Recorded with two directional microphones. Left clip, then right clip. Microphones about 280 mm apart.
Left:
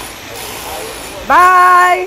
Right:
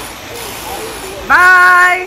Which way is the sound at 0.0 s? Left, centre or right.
Centre.